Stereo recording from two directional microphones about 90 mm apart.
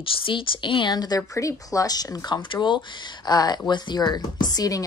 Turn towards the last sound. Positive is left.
turn(degrees=45)  # may be behind; listen again after turning